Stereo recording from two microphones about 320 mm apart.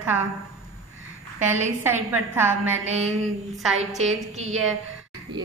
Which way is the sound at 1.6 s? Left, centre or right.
Centre.